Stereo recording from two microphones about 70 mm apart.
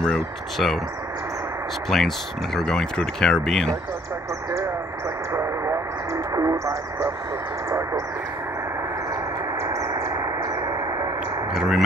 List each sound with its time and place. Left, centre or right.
0.0 s speech: centre
1.9 s speech: centre
5.3 s radio: right
6.3 s a sound: right
9.6 s a sound: right
11.5 s speech: centre